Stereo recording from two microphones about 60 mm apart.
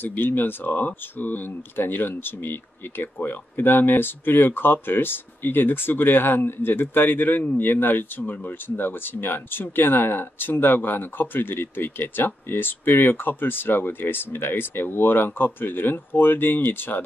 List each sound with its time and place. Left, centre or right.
0.0 s speech: left